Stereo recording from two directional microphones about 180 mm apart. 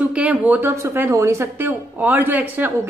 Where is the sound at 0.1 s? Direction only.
10° right (ahead or behind).